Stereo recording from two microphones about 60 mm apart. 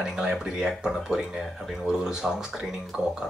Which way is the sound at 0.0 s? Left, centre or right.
Centre.